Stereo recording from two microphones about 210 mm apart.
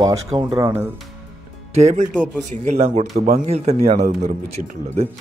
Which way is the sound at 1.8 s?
35° right (ahead or behind).